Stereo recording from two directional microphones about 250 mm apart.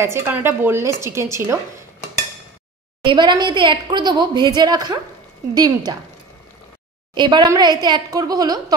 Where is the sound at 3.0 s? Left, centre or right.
Centre.